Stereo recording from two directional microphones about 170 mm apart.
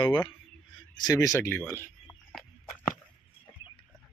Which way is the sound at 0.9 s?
20° left (ahead or behind).